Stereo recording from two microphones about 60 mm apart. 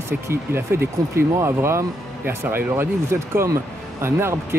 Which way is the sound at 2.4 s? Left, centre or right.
Right.